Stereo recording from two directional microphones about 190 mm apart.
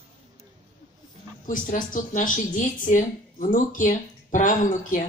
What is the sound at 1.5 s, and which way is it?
Speech, 45° left (ahead or behind).